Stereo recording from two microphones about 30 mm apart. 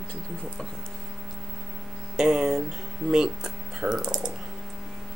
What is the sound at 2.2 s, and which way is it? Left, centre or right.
Speech, centre.